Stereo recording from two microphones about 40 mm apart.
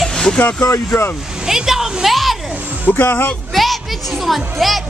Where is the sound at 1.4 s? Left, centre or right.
Centre.